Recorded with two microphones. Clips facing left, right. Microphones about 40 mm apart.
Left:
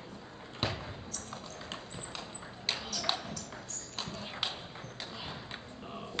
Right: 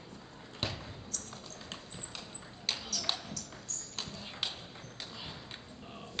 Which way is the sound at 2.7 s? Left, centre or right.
Centre.